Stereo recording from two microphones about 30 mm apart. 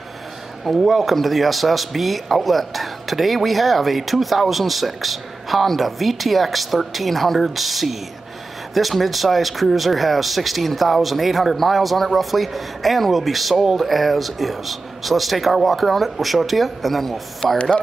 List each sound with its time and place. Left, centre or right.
0.7 s speech: centre
17.6 s speech: left